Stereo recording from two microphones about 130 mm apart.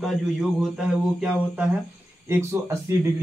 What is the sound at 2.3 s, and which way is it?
Speech, 20° right (ahead or behind).